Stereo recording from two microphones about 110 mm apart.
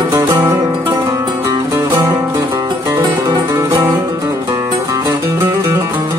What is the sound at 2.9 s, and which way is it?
Music, 25° right (ahead or behind).